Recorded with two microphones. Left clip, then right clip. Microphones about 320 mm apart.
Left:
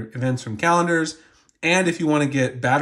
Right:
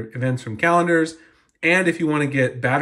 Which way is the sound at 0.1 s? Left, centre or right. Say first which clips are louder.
Left 1 dB; centre.